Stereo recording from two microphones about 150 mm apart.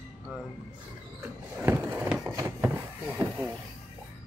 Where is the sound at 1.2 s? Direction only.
15° right (ahead or behind).